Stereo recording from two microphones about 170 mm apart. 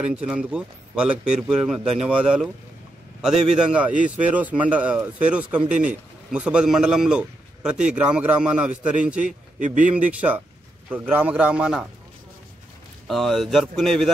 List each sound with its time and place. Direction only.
0.0 s a man's voice: 5° right (ahead or behind)
9.2 s speech: 45° right (ahead or behind)
10.9 s speech: 10° right (ahead or behind)
13.1 s speech: centre (ahead or behind)